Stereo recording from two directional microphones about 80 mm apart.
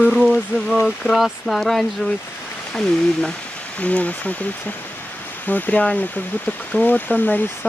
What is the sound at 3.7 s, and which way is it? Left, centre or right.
Speech, centre.